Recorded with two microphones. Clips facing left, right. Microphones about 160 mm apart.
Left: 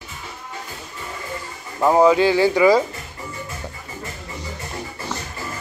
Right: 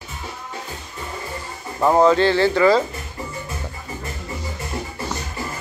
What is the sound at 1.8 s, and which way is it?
Speech, 5° left (ahead or behind).